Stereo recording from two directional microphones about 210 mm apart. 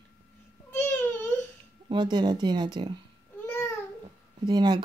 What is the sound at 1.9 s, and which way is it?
Speech, 20° right (ahead or behind).